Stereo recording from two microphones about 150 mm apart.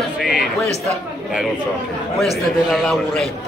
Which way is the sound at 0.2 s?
Centre (ahead or behind).